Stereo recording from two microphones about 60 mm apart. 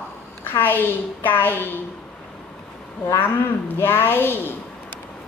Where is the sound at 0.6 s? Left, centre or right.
Left.